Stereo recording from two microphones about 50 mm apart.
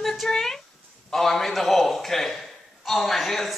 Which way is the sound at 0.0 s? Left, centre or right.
Centre.